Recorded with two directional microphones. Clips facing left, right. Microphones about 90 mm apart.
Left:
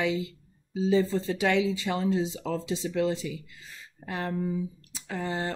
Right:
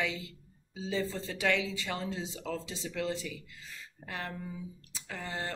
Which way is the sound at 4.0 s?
25° left (ahead or behind).